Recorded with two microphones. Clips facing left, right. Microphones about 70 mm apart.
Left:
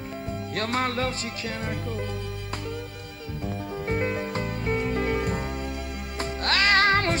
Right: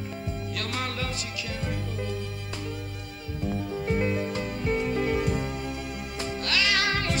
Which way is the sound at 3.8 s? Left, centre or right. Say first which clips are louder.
Even; left.